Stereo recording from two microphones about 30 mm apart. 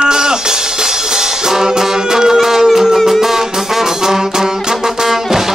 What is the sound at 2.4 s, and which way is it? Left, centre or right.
Music, centre.